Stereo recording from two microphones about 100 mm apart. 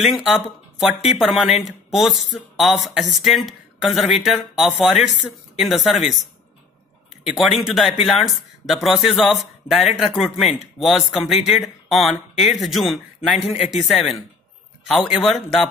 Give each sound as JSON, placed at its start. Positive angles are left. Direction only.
{"t": 0.0, "sound": "speech", "side_deg": 0}
{"t": 7.2, "sound": "speech", "side_deg": -5}